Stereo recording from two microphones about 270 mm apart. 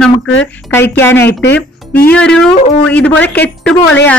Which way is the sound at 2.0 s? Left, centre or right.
Centre.